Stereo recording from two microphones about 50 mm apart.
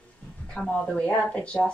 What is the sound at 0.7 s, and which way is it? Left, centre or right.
Speech, left.